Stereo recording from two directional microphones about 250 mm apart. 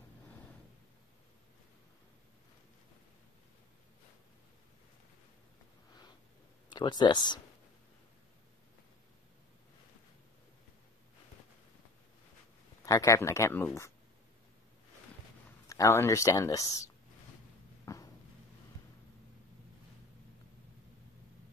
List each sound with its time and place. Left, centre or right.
6.7 s speech: centre
12.8 s speech: centre
15.7 s speech: centre
17.8 s a sound: centre